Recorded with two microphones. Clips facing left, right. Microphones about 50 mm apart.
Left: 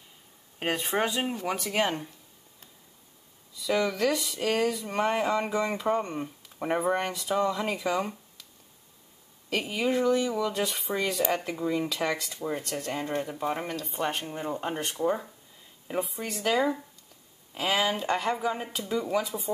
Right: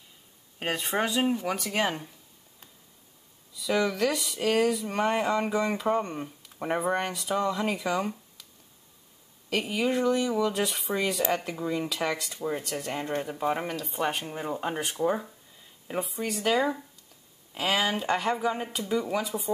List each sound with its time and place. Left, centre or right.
0.6 s speech: centre
3.5 s speech: centre
9.5 s speech: centre